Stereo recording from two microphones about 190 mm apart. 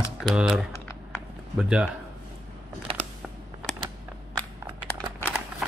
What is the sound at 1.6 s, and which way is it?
Speech, 5° right (ahead or behind).